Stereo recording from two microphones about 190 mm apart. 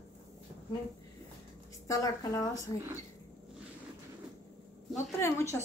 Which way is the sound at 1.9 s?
20° left (ahead or behind).